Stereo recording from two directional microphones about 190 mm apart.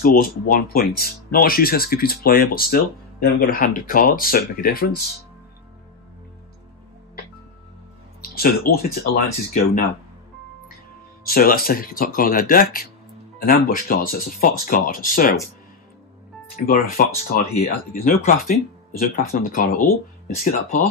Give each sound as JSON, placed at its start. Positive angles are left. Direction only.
{"t": 0.0, "sound": "speech", "side_deg": 50}
{"t": 8.2, "sound": "speech", "side_deg": 50}
{"t": 11.2, "sound": "speech", "side_deg": 50}
{"t": 16.5, "sound": "speech", "side_deg": 50}